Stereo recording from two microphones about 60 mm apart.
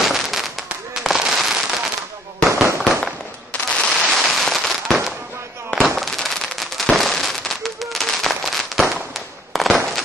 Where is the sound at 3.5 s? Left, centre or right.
Centre.